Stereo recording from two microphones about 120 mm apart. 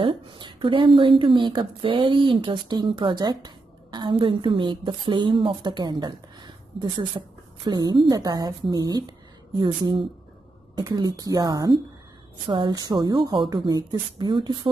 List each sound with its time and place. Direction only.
0.0 s a woman's voice: 40° right (ahead or behind)